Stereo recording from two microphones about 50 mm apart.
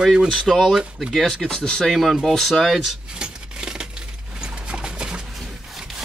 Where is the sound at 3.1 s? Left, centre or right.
Centre.